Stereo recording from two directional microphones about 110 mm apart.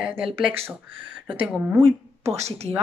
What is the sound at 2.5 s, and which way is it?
Speech, 70° right (ahead or behind).